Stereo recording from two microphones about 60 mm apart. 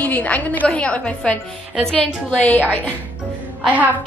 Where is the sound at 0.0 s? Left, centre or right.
Left.